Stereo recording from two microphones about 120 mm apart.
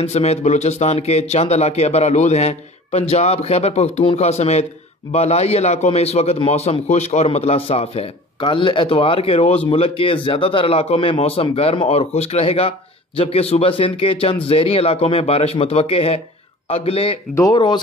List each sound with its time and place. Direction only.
0.0 s speech: 60° left (ahead or behind)
7.2 s a man's voice: 55° left (ahead or behind)